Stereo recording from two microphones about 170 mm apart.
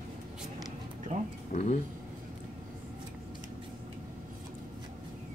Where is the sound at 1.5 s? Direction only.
40° left (ahead or behind).